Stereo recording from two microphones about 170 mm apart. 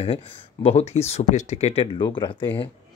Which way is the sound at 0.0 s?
35° left (ahead or behind).